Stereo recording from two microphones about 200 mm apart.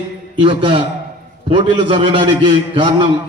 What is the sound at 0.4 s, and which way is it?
A man's voice, 25° right (ahead or behind).